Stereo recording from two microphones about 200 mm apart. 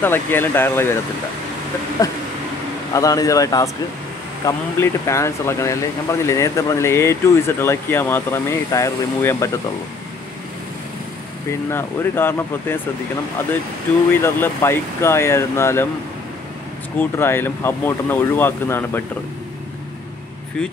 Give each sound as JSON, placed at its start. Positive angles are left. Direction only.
{"t": 0.0, "sound": "speech", "side_deg": 10}
{"t": 2.9, "sound": "speech", "side_deg": 15}
{"t": 11.7, "sound": "speech", "side_deg": 10}
{"t": 14.2, "sound": "speech", "side_deg": 10}
{"t": 17.0, "sound": "speech", "side_deg": 10}